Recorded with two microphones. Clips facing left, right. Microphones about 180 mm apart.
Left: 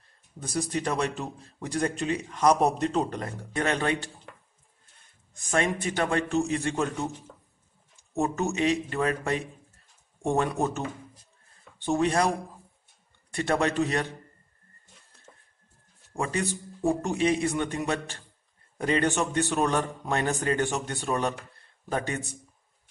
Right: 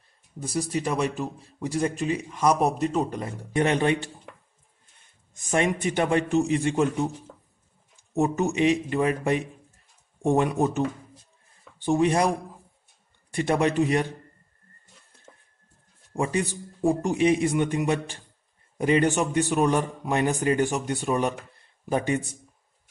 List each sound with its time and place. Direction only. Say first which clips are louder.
0.4 s a man's voice: right 2 dB; 5° right (ahead or behind)
5.5 s a man's voice: right 3 dB; 15° right (ahead or behind)
8.1 s a man's voice: right 3 dB; 15° right (ahead or behind)
11.8 s a man's voice: right 3 dB; 15° right (ahead or behind)
13.3 s a man's voice: right 3 dB; 15° right (ahead or behind)
16.2 s a man's voice: right 3 dB; 15° right (ahead or behind)